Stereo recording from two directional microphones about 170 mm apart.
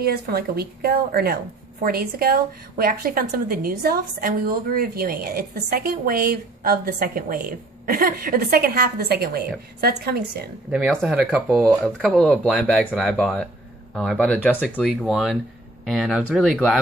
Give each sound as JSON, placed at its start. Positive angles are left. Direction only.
{"t": 0.0, "sound": "a woman's voice", "side_deg": -65}
{"t": 10.7, "sound": "speech", "side_deg": 0}
{"t": 14.6, "sound": "speech", "side_deg": -5}